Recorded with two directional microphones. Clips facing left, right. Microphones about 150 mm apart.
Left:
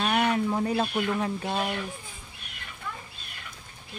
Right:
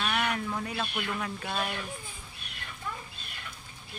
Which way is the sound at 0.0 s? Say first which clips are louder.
Left 6 dB; 30° left (ahead or behind).